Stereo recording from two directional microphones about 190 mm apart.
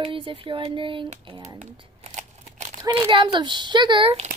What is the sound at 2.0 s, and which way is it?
Scissors, 40° right (ahead or behind).